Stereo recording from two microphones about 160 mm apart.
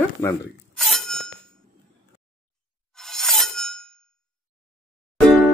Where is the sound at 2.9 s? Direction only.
Centre (ahead or behind).